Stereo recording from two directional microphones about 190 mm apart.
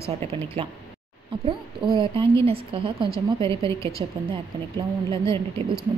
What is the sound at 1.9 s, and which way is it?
A woman's voice, 25° right (ahead or behind).